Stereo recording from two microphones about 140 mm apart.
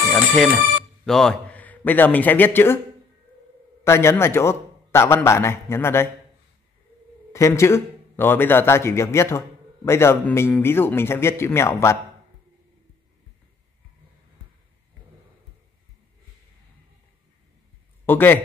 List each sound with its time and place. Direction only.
0.0 s a man's voice: centre (ahead or behind)
3.8 s a man's voice: 20° left (ahead or behind)
7.3 s a man's voice: 20° left (ahead or behind)
18.0 s a man's voice: 15° left (ahead or behind)